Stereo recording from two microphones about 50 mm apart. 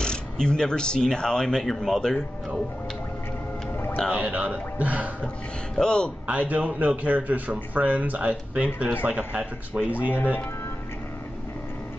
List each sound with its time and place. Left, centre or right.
0.0 s speech: centre
4.1 s a man's voice: right
5.8 s speech: centre
6.2 s a man's voice: right